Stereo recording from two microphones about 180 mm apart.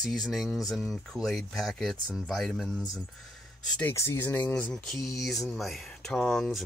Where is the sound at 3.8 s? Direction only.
10° left (ahead or behind).